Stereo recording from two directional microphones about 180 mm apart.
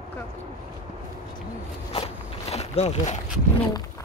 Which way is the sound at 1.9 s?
35° left (ahead or behind).